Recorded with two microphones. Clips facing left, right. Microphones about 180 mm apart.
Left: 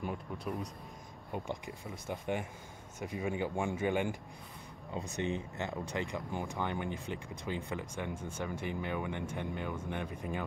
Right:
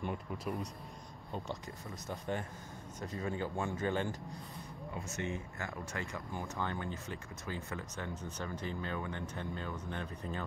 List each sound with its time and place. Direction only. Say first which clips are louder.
0.0 s speech: even; centre (ahead or behind)
1.3 s speech: left 3 dB; 10° left (ahead or behind)